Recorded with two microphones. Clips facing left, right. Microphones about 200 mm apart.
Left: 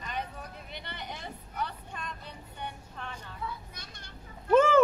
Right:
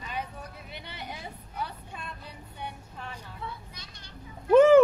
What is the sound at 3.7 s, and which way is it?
Children playing, 50° left (ahead or behind).